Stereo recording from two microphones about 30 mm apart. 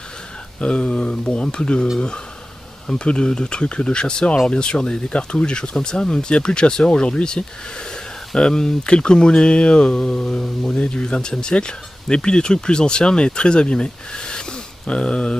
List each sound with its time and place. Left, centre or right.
0.6 s speech: left
2.9 s speech: left